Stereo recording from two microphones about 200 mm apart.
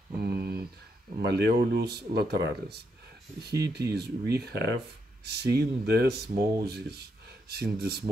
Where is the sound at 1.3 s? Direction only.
50° right (ahead or behind).